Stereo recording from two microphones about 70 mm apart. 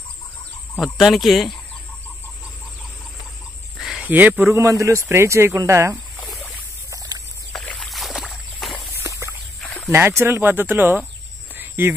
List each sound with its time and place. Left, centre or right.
0.9 s speech: centre
4.0 s speech: right
4.5 s speech: right
7.5 s vehicle: centre
7.9 s a sound: centre
9.0 s walk: right
9.8 s speech: right
11.5 s a sound: right